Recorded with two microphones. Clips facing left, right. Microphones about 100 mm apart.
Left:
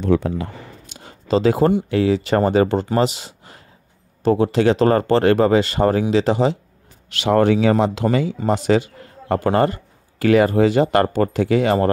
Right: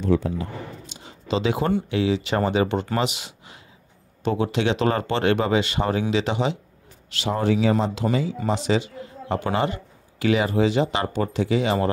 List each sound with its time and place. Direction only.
0.0 s a man's voice: 70° left (ahead or behind); by 6.6 s 40° left (ahead or behind)
7.1 s speech: 65° left (ahead or behind)
8.5 s a man's voice: 50° left (ahead or behind)